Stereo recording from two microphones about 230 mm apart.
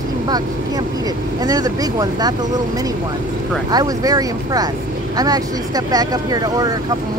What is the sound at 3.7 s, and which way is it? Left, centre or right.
Speech, centre.